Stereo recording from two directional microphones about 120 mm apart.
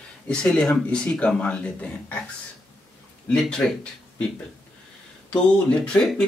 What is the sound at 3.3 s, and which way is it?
Speech, 5° left (ahead or behind).